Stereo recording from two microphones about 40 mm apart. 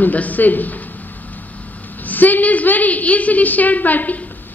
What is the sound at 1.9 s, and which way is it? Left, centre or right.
A woman's voice, left.